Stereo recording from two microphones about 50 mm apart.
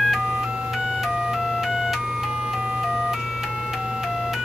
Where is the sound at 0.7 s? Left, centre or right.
Centre.